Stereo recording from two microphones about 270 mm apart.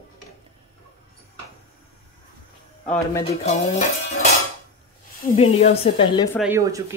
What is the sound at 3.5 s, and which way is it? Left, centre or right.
Music, left.